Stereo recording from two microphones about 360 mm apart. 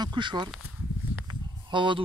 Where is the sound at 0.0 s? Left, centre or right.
Centre.